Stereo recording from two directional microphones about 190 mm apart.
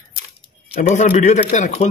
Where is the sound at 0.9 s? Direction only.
40° left (ahead or behind).